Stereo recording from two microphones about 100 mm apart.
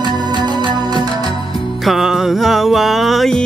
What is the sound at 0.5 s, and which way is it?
Music, 45° right (ahead or behind).